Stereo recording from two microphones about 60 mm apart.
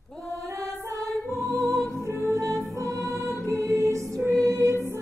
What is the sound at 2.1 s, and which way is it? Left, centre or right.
Music, right.